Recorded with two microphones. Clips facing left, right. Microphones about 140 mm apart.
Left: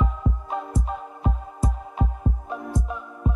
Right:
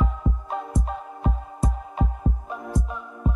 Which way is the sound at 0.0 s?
Centre (ahead or behind).